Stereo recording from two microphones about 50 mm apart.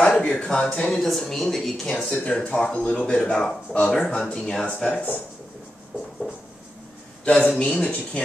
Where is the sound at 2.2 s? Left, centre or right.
Centre.